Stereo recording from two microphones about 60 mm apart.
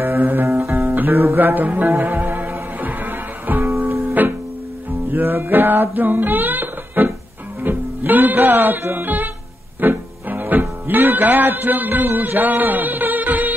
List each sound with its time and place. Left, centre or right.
0.0 s music: right
0.5 s guitar: right
0.7 s music: right
7.6 s speech: right
9.8 s music: right